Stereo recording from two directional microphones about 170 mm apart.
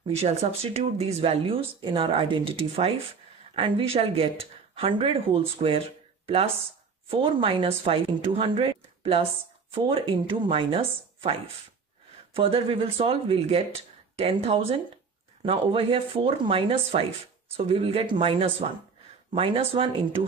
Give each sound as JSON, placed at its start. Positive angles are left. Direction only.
{"t": 0.2, "sound": "speech", "side_deg": -35}
{"t": 12.4, "sound": "speech", "side_deg": -35}